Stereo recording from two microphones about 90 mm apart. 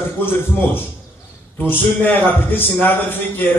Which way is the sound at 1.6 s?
20° left (ahead or behind).